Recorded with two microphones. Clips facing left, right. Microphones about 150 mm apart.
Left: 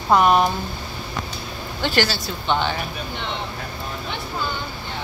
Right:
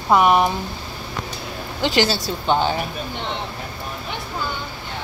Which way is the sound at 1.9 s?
20° right (ahead or behind).